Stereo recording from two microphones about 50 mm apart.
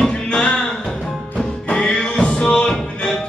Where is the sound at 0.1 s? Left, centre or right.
Left.